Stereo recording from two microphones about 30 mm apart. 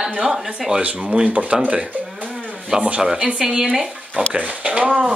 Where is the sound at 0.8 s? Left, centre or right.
Right.